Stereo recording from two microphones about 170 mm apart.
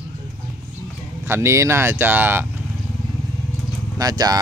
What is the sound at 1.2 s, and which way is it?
Speech, 15° right (ahead or behind).